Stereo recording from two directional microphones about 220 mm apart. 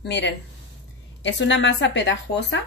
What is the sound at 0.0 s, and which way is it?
Speech, 50° left (ahead or behind).